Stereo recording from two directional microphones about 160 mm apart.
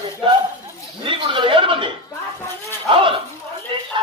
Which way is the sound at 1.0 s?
30° right (ahead or behind).